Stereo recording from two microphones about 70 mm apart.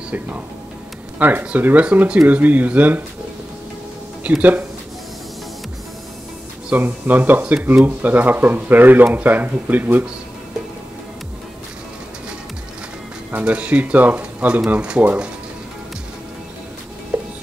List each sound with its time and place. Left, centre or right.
1.2 s speech: right
4.2 s speech: right
6.7 s speech: right
13.3 s speech: centre
17.1 s music: centre